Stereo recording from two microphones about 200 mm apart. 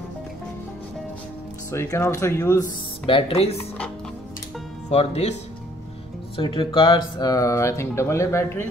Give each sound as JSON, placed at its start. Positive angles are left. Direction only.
{"t": 1.7, "sound": "speech", "side_deg": 15}
{"t": 3.1, "sound": "speech", "side_deg": 25}
{"t": 4.8, "sound": "speech", "side_deg": 35}
{"t": 6.3, "sound": "speech", "side_deg": 25}